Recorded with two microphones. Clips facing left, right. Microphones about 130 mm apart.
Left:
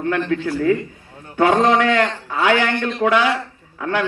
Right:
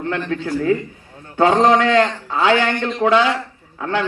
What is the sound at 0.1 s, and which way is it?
A man's voice, 25° right (ahead or behind).